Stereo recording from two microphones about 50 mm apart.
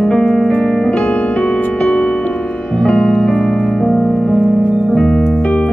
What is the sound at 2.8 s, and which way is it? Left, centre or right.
Music, centre.